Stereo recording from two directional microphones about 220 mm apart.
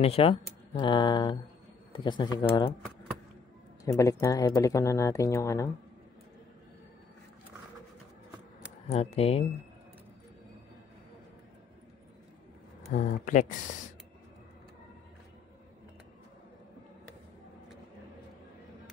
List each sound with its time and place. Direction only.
0.0 s speech: 25° left (ahead or behind)
3.8 s speech: 15° left (ahead or behind)
8.9 s speech: 30° left (ahead or behind)
12.9 s speech: 35° left (ahead or behind)